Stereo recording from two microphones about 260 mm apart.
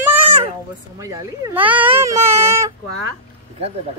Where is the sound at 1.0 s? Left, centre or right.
Centre.